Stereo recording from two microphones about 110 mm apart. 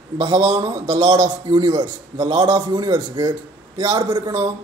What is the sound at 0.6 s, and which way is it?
A man's voice, 35° right (ahead or behind).